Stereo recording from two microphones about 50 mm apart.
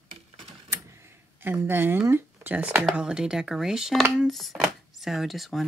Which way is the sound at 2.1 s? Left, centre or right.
Right.